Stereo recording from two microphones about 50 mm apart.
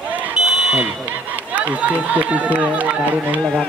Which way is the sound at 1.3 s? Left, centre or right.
Right.